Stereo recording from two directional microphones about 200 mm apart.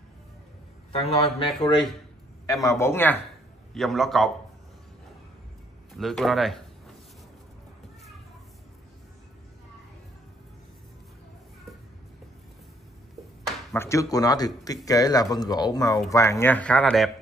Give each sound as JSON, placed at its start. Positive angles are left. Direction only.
{"t": 0.9, "sound": "speech", "side_deg": 30}
{"t": 2.6, "sound": "speech", "side_deg": 15}
{"t": 5.9, "sound": "speech", "side_deg": 0}
{"t": 13.7, "sound": "speech", "side_deg": 15}